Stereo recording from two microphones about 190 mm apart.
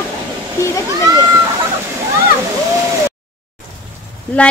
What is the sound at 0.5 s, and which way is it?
Speech, 15° left (ahead or behind).